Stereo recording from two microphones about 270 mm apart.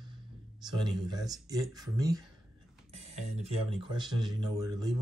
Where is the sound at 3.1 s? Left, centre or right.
Right.